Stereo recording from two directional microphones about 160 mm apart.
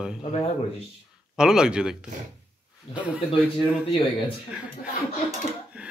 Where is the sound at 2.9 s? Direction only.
35° left (ahead or behind).